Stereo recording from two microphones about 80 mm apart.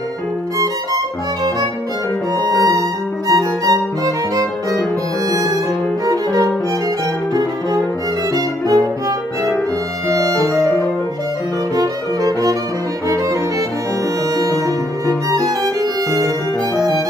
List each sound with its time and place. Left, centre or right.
0.6 s violin: right
2.3 s music: right
6.0 s violin: right
8.4 s violin: right
10.0 s music: right
11.7 s violin: right
14.3 s music: right
15.0 s violin: right